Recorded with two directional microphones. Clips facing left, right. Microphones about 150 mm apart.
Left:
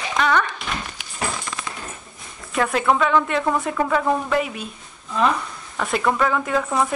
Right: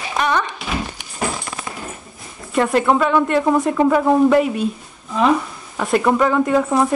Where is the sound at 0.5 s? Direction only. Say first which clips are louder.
Right 5 dB; 5° right (ahead or behind).